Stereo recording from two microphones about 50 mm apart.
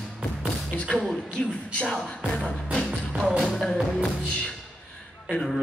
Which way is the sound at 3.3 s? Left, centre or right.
Centre.